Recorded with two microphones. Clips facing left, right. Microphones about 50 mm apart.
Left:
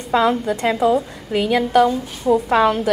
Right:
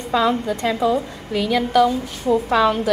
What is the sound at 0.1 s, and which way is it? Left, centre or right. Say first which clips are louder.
A woman's voice: left 2 dB; left.